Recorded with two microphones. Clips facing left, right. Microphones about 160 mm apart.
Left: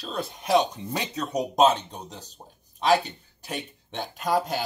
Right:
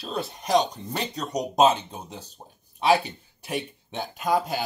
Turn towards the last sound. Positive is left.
turn(degrees=0)  # may be behind; listen again after turning